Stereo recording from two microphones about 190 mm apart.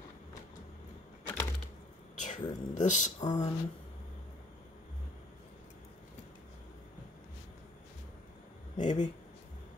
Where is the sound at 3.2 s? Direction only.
20° left (ahead or behind).